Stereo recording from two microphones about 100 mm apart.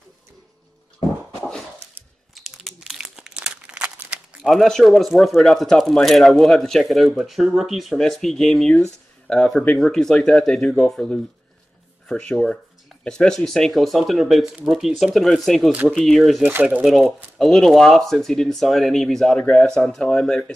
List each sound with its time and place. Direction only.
2.3 s crumpling: centre (ahead or behind)
4.4 s speech: 5° left (ahead or behind)
16.4 s speech: 15° right (ahead or behind)
17.4 s speech: centre (ahead or behind)